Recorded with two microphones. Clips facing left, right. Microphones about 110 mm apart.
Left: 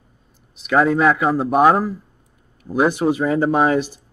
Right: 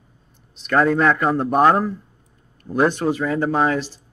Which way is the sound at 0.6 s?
5° left (ahead or behind).